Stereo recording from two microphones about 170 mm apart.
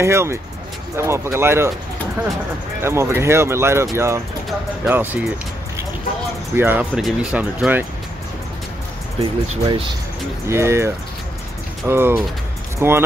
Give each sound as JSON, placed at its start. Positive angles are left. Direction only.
{"t": 0.0, "sound": "speech", "side_deg": -15}
{"t": 2.8, "sound": "speech", "side_deg": -15}
{"t": 6.5, "sound": "speech", "side_deg": -10}
{"t": 9.2, "sound": "speech", "side_deg": -30}
{"t": 10.5, "sound": "speech", "side_deg": -15}